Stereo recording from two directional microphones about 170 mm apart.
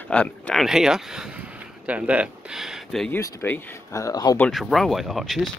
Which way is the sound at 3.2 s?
15° left (ahead or behind).